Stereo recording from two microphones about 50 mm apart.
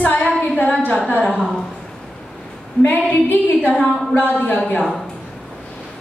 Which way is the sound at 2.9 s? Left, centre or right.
Left.